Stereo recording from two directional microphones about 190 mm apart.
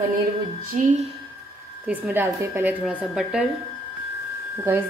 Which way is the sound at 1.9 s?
10° right (ahead or behind).